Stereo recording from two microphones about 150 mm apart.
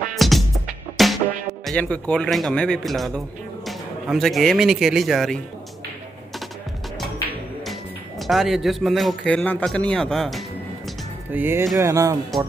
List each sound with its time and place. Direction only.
0.1 s music: centre (ahead or behind)
1.7 s a man's voice: 10° left (ahead or behind)
8.3 s a man's voice: centre (ahead or behind)
11.3 s speech: 15° right (ahead or behind)